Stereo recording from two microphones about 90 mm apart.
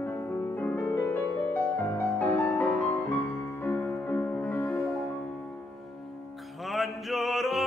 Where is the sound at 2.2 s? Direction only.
20° left (ahead or behind).